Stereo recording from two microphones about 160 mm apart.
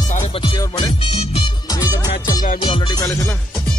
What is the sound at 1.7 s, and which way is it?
Music, 20° left (ahead or behind).